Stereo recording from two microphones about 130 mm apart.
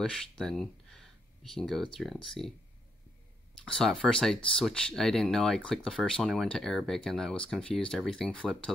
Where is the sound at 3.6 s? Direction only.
5° left (ahead or behind).